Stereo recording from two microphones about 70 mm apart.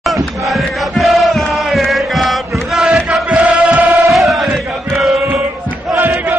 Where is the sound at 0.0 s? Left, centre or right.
Centre.